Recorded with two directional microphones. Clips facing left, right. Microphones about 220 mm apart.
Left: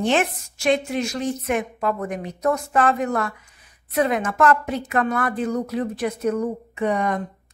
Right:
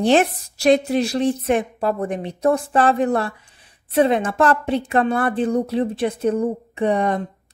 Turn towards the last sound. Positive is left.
turn(degrees=-30)  # may be behind; listen again after turning